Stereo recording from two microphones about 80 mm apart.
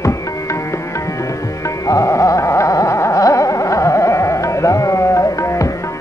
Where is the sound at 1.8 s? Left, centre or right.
Left.